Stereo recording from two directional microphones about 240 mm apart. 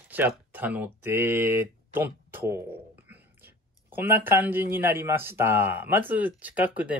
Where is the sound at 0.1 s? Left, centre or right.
Centre.